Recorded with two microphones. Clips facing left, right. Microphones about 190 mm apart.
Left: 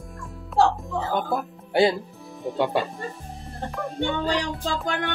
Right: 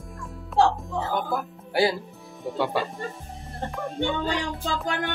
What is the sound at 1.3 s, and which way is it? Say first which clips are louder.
Speech: left 2 dB; 20° left (ahead or behind).